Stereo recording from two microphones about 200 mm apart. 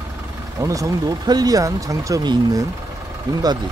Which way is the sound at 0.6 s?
15° right (ahead or behind).